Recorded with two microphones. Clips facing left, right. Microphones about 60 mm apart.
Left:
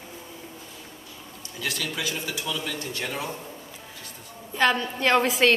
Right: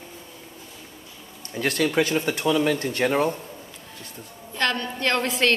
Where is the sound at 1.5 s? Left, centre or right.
Right.